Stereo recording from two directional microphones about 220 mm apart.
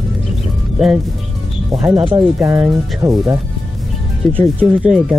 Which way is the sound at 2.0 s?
25° right (ahead or behind).